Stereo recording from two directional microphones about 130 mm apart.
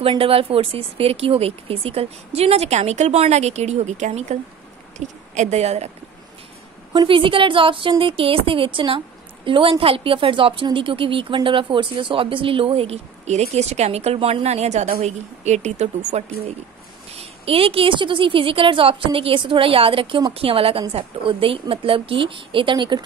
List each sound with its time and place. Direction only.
0.0 s a woman's voice: 45° right (ahead or behind)
6.9 s a woman's voice: 40° right (ahead or behind)